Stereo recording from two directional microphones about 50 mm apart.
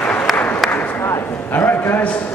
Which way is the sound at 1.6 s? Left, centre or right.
Left.